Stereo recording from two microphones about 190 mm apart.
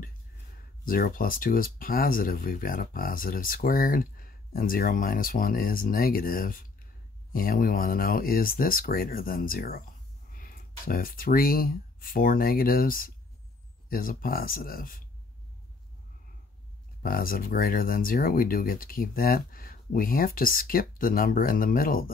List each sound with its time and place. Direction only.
0.8 s speech: 50° left (ahead or behind)
17.0 s speech: 50° left (ahead or behind)